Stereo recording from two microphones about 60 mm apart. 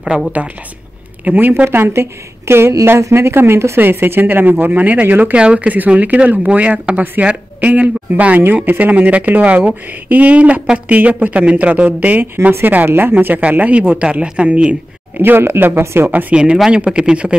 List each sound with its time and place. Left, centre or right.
1.2 s speech: right
15.2 s speech: right
16.1 s speech: right
16.7 s speech: centre